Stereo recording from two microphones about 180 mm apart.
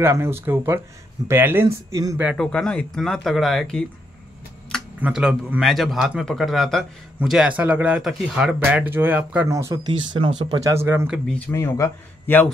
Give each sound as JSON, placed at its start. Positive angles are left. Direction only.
{"t": 0.0, "sound": "speech", "side_deg": -15}
{"t": 2.2, "sound": "speech", "side_deg": 5}
{"t": 5.0, "sound": "speech", "side_deg": -5}
{"t": 9.9, "sound": "speech", "side_deg": -30}
{"t": 11.2, "sound": "a man's voice", "side_deg": 10}